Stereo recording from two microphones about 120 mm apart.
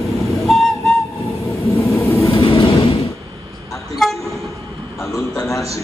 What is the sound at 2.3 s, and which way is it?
Vehicle, 40° left (ahead or behind).